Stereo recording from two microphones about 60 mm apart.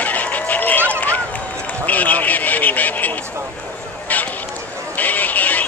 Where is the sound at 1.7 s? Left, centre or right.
Left.